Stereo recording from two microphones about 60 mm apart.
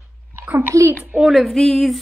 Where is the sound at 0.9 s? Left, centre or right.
Right.